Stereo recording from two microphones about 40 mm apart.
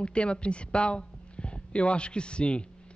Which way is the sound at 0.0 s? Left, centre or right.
Left.